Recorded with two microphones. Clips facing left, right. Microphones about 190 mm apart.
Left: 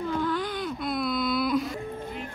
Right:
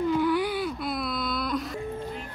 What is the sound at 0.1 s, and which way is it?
Whimper, 10° right (ahead or behind).